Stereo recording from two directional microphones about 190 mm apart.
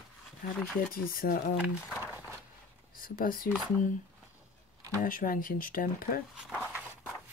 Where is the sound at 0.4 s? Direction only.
45° left (ahead or behind).